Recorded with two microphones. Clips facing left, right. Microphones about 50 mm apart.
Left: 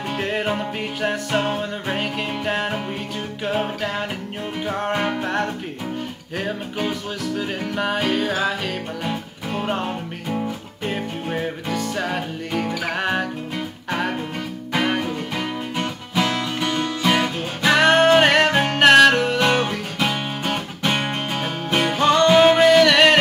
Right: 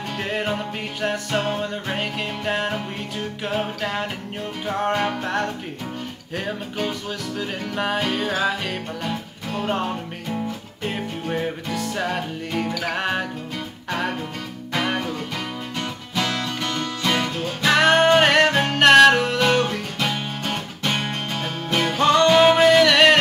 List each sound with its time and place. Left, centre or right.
0.2 s music: centre
14.7 s music: centre
21.9 s music: centre